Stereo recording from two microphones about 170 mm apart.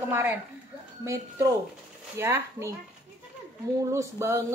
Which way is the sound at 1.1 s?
15° right (ahead or behind).